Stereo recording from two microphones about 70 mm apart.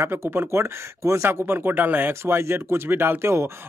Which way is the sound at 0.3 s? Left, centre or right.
Right.